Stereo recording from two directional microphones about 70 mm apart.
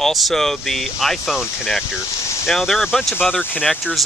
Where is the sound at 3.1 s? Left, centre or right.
Left.